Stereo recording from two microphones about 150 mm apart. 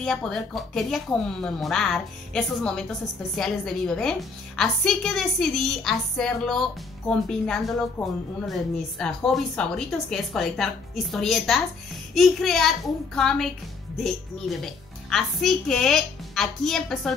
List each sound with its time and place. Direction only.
0.0 s a woman's voice: 5° left (ahead or behind)
8.0 s speech: 20° left (ahead or behind)
8.5 s a woman's voice: 5° left (ahead or behind)